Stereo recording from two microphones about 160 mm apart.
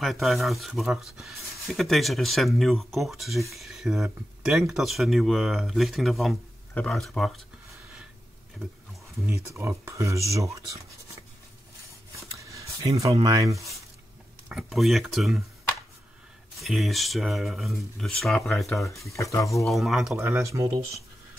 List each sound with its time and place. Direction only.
0.0 s speech: centre (ahead or behind)
9.2 s speech: 15° right (ahead or behind)
12.4 s a sound: 20° right (ahead or behind)
13.1 s speech: 25° right (ahead or behind)
14.5 s speech: centre (ahead or behind)
16.5 s speech: centre (ahead or behind)
19.1 s speech: 20° left (ahead or behind)
19.6 s speech: centre (ahead or behind)
20.3 s speech: 20° right (ahead or behind)